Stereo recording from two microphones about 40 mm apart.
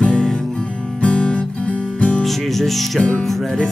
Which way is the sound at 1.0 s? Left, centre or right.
Left.